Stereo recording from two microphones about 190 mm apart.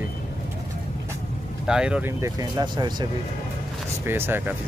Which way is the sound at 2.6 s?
25° right (ahead or behind).